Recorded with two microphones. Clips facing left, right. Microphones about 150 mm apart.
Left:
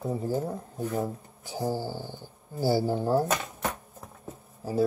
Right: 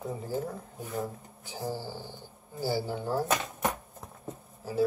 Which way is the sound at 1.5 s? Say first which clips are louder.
Left 5 dB; 50° left (ahead or behind).